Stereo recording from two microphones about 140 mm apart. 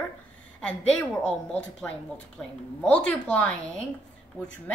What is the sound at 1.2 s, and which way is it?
A woman's voice, 5° left (ahead or behind).